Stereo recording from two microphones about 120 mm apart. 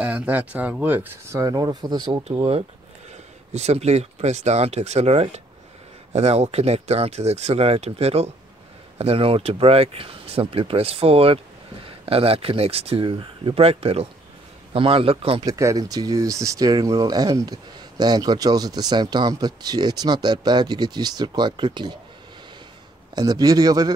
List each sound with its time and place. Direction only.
0.0 s speech: 10° right (ahead or behind)
1.4 s speech: 35° right (ahead or behind)
3.5 s a man's voice: 65° right (ahead or behind)
15.4 s speech: 25° right (ahead or behind)
23.1 s speech: 35° right (ahead or behind)